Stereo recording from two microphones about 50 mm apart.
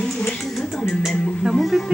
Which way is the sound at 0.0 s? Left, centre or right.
Centre.